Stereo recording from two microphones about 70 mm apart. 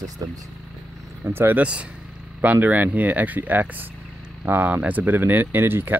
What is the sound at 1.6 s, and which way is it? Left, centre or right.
Speech, centre.